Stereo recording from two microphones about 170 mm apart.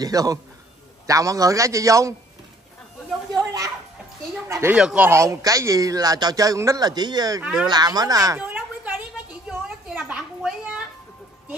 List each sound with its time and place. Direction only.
0.0 s speech: 20° right (ahead or behind)
4.5 s speech: 15° right (ahead or behind)
4.7 s speech: 5° right (ahead or behind); by 8.4 s 20° right (ahead or behind)
8.4 s a sound: 10° right (ahead or behind)